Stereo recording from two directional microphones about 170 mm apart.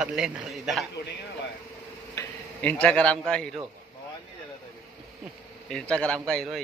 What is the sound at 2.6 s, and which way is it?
A man's voice, 5° left (ahead or behind).